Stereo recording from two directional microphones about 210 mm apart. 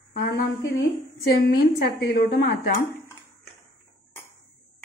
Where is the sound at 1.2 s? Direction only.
50° left (ahead or behind).